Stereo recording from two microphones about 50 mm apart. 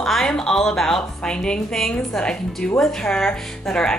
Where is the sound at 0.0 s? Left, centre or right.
Centre.